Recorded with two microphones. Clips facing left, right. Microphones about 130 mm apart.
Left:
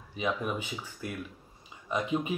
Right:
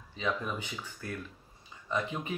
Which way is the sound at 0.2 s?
15° left (ahead or behind).